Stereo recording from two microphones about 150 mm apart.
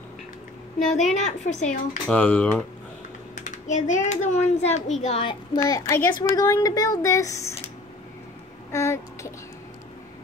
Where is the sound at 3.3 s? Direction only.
55° left (ahead or behind); by 5.6 s 35° left (ahead or behind).